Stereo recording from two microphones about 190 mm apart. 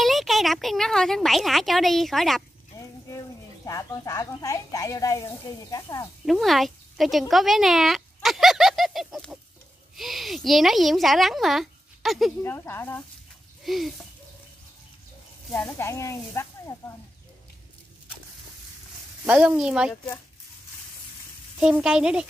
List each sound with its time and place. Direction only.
0.0 s speech: centre (ahead or behind)
2.7 s a sound: 15° left (ahead or behind)
3.1 s speech: 15° left (ahead or behind)
6.2 s speech: centre (ahead or behind)
12.4 s speech: 15° left (ahead or behind)
13.7 s speech: centre (ahead or behind)
15.5 s speech: 5° left (ahead or behind)
19.2 s speech: 5° right (ahead or behind)
21.5 s speech: 5° right (ahead or behind)